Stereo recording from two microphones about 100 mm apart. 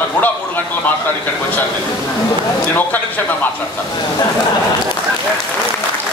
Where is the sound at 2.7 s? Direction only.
15° left (ahead or behind).